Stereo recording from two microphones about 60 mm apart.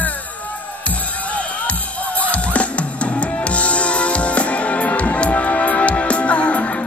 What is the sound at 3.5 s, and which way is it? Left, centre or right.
Music, left.